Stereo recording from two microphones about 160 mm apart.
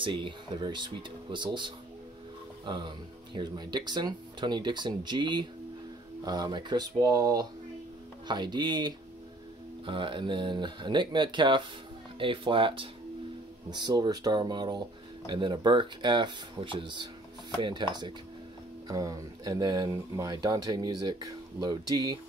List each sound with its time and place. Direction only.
0.0 s speech: 30° right (ahead or behind)